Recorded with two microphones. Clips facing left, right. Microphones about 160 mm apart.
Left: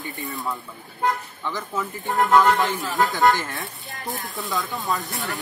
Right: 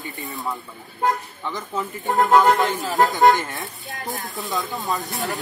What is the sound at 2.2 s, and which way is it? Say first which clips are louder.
Speech: right 1 dB; 20° right (ahead or behind).